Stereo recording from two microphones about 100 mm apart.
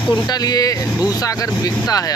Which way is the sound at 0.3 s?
40° left (ahead or behind).